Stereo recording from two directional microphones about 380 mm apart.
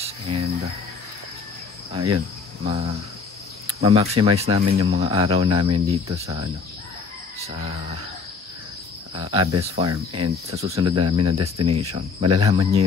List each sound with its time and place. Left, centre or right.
0.3 s cricket: centre
2.0 s speech: right
2.6 s speech: centre
7.4 s speech: centre
9.1 s speech: centre